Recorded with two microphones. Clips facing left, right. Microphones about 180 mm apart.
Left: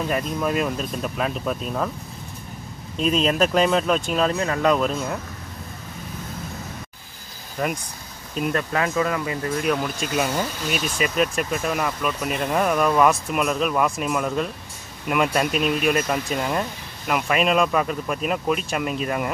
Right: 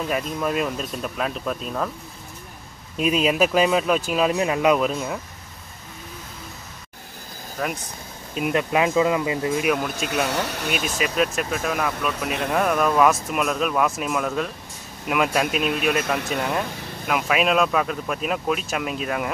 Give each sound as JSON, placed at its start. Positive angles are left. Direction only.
{"t": 0.1, "sound": "speech", "side_deg": 0}
{"t": 3.0, "sound": "speech", "side_deg": -5}
{"t": 7.6, "sound": "speech", "side_deg": 5}
{"t": 8.4, "sound": "speech", "side_deg": -15}
{"t": 10.3, "sound": "speech", "side_deg": -70}
{"t": 11.0, "sound": "speech", "side_deg": 0}